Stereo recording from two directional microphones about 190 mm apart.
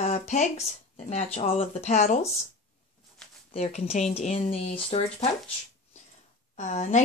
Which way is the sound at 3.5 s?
35° left (ahead or behind).